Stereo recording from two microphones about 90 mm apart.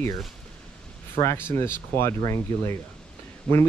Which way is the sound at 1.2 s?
30° left (ahead or behind).